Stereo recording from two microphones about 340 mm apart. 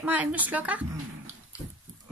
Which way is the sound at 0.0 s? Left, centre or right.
Centre.